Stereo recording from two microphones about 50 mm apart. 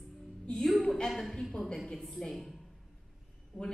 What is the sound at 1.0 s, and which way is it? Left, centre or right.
A woman's voice, centre.